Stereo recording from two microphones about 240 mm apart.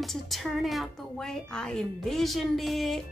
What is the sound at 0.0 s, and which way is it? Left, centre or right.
Speech, centre.